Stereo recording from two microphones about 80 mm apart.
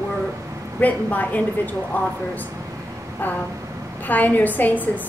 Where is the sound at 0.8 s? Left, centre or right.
Left.